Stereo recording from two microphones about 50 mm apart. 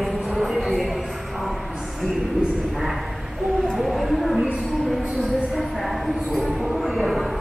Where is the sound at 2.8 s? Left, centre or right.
Centre.